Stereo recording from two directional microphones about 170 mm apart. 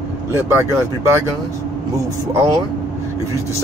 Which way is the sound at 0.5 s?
15° right (ahead or behind).